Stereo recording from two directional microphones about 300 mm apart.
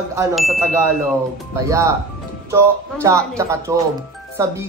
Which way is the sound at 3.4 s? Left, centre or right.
Centre.